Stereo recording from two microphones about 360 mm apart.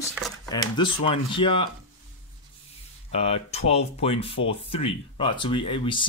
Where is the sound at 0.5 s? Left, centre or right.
Centre.